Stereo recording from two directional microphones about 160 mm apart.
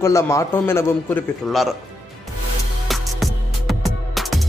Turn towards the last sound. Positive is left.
turn(degrees=0)  # may be behind; listen again after turning